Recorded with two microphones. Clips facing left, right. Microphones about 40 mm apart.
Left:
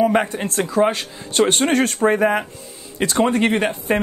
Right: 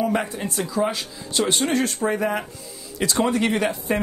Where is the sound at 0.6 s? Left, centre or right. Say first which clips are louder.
Left 6 dB; left.